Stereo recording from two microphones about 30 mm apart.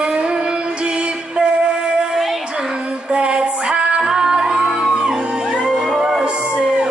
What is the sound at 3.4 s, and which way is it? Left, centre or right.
Female singing, right.